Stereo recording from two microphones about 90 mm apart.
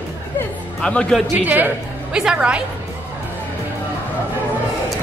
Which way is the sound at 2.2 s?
10° right (ahead or behind).